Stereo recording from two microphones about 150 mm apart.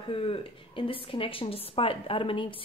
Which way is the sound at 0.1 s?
40° left (ahead or behind).